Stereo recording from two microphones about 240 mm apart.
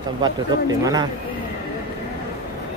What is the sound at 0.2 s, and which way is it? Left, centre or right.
Speech, centre.